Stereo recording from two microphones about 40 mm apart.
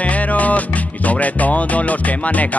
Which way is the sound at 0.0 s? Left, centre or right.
Left.